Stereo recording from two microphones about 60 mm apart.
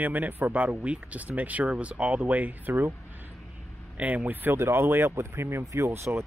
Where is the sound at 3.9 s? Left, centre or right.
Right.